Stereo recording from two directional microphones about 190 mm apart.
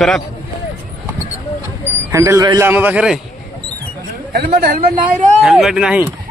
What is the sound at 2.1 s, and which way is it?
Speech, 15° right (ahead or behind).